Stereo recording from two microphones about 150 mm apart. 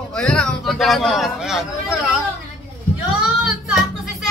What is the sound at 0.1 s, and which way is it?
A man's voice, 5° left (ahead or behind).